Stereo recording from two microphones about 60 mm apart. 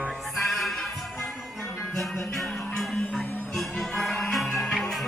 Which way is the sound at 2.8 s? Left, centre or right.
Centre.